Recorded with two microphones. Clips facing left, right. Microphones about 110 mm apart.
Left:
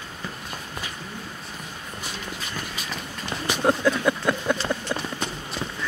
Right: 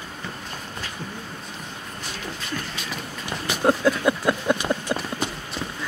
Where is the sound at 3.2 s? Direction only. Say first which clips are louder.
Right 1 dB; 5° right (ahead or behind).